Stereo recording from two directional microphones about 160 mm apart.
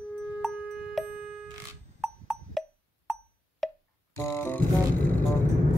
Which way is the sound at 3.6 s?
Centre (ahead or behind).